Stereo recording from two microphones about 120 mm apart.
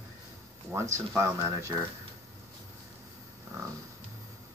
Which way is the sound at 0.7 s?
25° right (ahead or behind).